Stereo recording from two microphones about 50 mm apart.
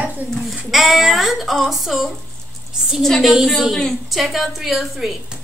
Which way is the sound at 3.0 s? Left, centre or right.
Centre.